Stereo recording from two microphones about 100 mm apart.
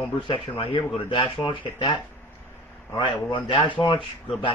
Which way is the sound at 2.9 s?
55° left (ahead or behind).